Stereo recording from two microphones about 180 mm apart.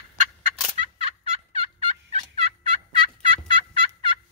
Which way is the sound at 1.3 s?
35° right (ahead or behind).